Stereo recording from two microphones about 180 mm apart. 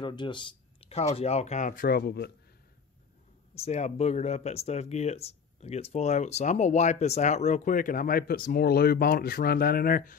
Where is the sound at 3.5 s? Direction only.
35° left (ahead or behind).